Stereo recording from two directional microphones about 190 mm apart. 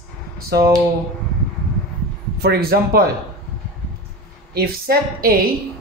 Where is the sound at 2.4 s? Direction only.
55° right (ahead or behind).